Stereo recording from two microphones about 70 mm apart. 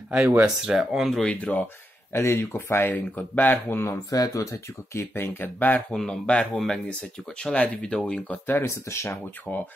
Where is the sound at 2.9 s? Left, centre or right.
Left.